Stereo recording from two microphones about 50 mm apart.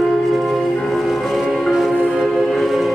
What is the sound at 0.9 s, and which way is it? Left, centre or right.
Music, centre.